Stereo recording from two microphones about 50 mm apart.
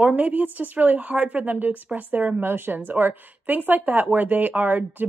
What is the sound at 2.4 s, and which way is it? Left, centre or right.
A woman's voice, right.